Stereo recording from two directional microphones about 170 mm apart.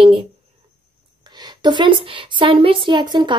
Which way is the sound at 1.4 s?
25° right (ahead or behind).